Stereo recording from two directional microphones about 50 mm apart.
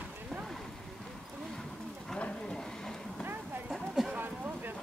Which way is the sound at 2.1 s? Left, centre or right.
Centre.